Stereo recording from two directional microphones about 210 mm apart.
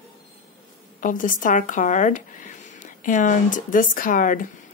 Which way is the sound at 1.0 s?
40° left (ahead or behind).